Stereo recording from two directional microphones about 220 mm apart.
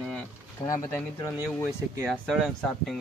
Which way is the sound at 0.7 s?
10° left (ahead or behind).